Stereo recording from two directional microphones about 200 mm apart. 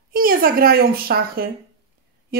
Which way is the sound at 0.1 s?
45° right (ahead or behind).